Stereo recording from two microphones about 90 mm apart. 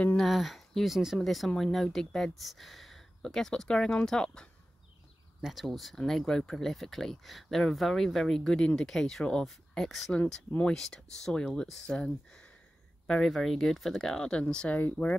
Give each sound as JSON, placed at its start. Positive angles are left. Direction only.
{"t": 0.2, "sound": "speech", "side_deg": 0}
{"t": 10.1, "sound": "speech", "side_deg": 15}
{"t": 14.8, "sound": "speech", "side_deg": 20}